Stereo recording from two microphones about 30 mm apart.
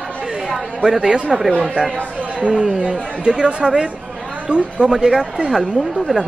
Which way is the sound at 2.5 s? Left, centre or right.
Right.